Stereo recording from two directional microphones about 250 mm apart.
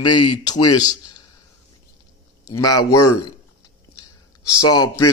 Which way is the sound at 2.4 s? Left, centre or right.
Centre.